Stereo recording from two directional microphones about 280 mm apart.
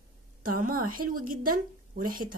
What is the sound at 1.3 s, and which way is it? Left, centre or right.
Speech, right.